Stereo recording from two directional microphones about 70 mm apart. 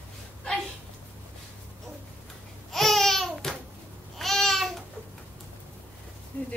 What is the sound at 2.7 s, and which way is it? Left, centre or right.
Babbling, centre.